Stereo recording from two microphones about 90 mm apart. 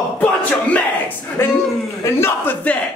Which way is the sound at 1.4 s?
30° left (ahead or behind).